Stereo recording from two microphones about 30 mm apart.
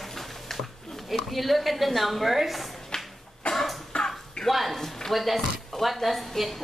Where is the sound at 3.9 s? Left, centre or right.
Left.